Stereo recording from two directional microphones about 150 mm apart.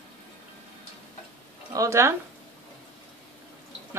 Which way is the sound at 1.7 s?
20° right (ahead or behind).